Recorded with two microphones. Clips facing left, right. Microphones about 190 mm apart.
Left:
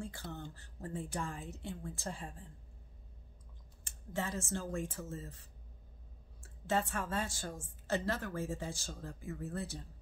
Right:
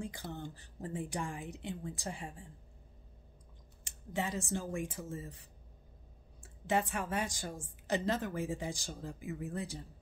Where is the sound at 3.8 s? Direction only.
15° right (ahead or behind).